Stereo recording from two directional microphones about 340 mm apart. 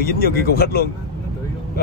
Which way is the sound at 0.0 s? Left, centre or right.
Left.